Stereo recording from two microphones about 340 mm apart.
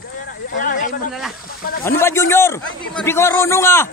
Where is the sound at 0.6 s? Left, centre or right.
Left.